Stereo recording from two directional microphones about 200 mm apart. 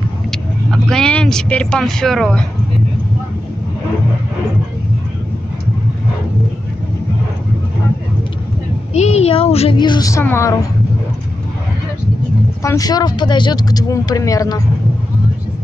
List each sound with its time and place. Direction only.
0.3 s vehicle: centre (ahead or behind)
8.9 s speech: 35° left (ahead or behind); by 10.5 s 15° left (ahead or behind)
12.6 s speech: 20° left (ahead or behind)